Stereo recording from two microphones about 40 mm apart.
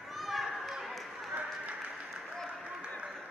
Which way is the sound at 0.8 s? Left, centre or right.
Centre.